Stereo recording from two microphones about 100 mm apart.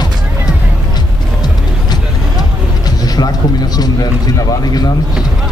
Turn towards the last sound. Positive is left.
turn(degrees=40)  # may be behind; listen again after turning